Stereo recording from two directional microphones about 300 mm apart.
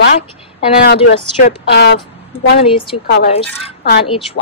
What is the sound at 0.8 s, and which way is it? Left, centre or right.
Speech, left.